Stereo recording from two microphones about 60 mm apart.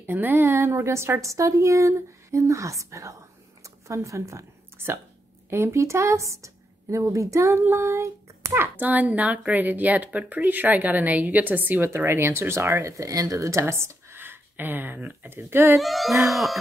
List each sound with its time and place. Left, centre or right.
0.0 s a woman's voice: right
4.8 s a woman's voice: right
7.5 s child singing: right
8.5 s speech: right
11.8 s speech: right
12.8 s speech: right
14.2 s speech: right
15.8 s a child's voice: centre